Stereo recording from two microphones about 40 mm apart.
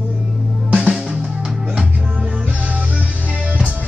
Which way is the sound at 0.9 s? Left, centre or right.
Right.